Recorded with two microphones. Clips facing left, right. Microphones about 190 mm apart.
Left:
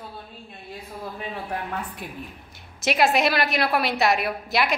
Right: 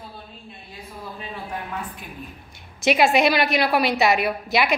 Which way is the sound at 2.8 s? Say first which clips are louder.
Right 3 dB; centre (ahead or behind).